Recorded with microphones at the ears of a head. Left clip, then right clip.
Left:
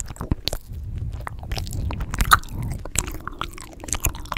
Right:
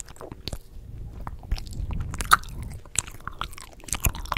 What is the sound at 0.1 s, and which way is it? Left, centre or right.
Biting, left.